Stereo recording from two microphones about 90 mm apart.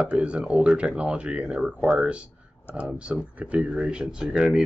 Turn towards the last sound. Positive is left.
turn(degrees=-5)  # may be behind; listen again after turning